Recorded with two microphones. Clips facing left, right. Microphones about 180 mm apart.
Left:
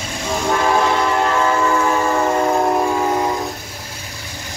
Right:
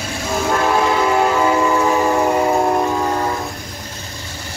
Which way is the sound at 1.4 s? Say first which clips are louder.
Right 2 dB; 15° right (ahead or behind).